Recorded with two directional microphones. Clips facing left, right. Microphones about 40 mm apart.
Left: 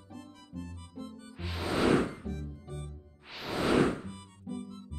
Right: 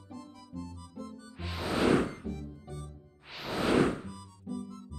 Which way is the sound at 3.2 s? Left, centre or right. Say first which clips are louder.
Even; centre.